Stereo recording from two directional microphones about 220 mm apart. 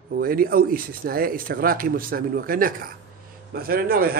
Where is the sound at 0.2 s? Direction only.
40° right (ahead or behind).